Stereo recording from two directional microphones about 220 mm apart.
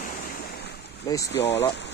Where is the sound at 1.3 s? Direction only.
50° left (ahead or behind).